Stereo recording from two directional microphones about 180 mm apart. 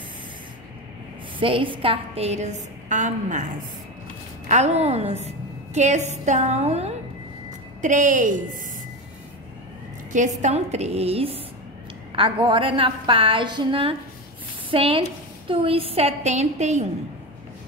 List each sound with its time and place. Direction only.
1.4 s a woman's voice: 30° right (ahead or behind); by 3.4 s 45° right (ahead or behind)
4.5 s a woman's voice: 40° right (ahead or behind)
10.1 s a woman's voice: 40° right (ahead or behind)